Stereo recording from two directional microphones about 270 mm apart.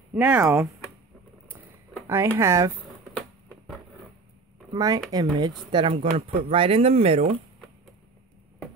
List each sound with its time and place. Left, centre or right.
0.1 s speech: centre
1.5 s a sound: centre
3.2 s patter: centre
4.7 s speech: centre